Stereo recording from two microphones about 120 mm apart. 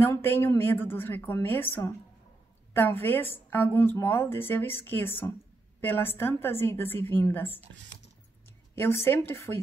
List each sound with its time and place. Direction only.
0.0 s a woman's voice: 20° left (ahead or behind)
8.7 s a woman's voice: 20° left (ahead or behind)